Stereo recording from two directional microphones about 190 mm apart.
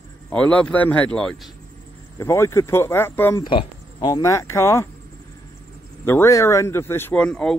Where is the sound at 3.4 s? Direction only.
20° left (ahead or behind).